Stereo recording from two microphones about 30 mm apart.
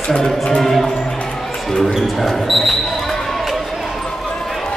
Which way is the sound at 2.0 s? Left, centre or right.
Centre.